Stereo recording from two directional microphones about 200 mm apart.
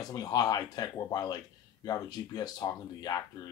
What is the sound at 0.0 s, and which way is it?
Speech, 20° left (ahead or behind).